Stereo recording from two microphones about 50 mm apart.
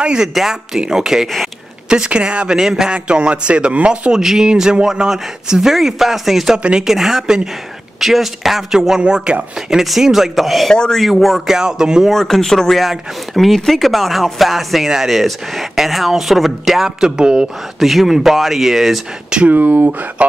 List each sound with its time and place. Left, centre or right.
0.0 s a man's voice: centre
4.2 s speech: centre
4.5 s speech: centre
9.8 s speech: centre
10.7 s speech: centre
11.0 s speech: centre
12.1 s speech: centre
17.7 s speech: centre
19.4 s speech: right